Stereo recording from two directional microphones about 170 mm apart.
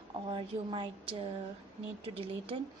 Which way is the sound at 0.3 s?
30° right (ahead or behind).